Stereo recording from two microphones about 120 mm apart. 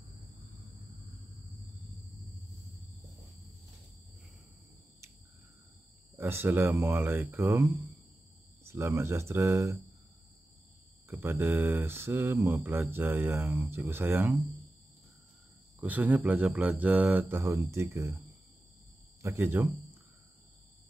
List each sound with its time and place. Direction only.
6.1 s speech: 20° right (ahead or behind)
11.1 s speech: 20° right (ahead or behind)
15.8 s speech: 15° right (ahead or behind)
19.2 s speech: 20° right (ahead or behind)